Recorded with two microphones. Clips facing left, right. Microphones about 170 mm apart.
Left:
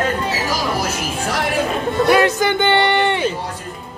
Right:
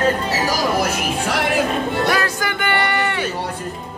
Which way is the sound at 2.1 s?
25° left (ahead or behind).